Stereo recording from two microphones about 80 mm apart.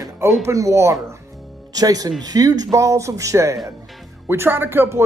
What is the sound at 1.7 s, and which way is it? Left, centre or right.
Speech, right.